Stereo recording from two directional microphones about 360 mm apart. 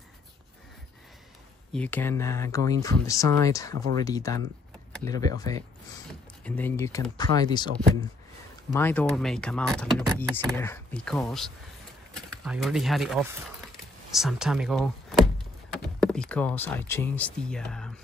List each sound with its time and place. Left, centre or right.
1.7 s speech: centre